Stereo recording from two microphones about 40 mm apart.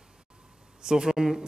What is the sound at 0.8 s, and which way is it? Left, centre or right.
Speech, centre.